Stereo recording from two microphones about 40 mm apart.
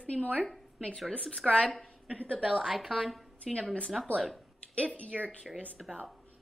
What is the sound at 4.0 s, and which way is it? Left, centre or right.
Speech, centre.